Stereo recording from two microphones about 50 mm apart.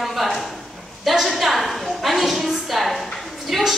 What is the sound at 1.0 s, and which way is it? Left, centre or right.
A woman's voice, centre.